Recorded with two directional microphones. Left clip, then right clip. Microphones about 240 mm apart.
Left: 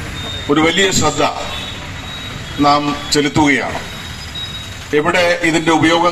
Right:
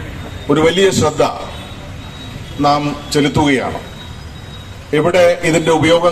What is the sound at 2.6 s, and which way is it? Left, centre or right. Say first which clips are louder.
A man's voice: left 1 dB; right.